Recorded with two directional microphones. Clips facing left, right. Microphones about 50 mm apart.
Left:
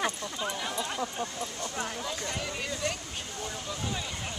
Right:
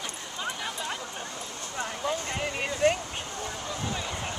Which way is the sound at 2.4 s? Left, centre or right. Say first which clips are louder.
Right 12 dB; right.